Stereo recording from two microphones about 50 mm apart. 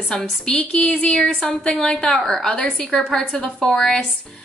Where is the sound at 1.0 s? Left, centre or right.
Centre.